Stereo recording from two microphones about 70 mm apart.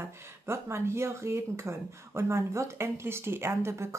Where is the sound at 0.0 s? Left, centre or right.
Right.